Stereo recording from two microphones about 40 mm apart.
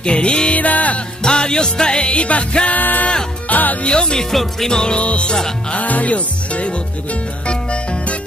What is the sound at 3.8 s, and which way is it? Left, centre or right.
Music, left.